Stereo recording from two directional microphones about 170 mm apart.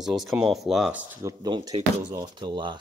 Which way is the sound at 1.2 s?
25° right (ahead or behind).